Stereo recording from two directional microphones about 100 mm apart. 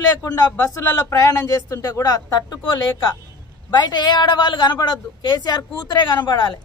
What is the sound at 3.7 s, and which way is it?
A man's voice, 45° left (ahead or behind).